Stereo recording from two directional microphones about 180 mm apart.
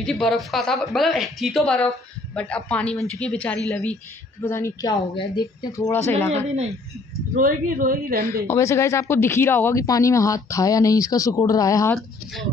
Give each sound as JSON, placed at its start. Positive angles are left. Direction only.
{"t": 0.0, "sound": "speech", "side_deg": 0}
{"t": 7.3, "sound": "a woman's voice", "side_deg": -50}
{"t": 8.5, "sound": "speech", "side_deg": 15}